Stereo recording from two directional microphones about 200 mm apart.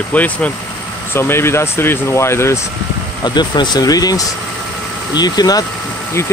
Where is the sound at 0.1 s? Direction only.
5° left (ahead or behind).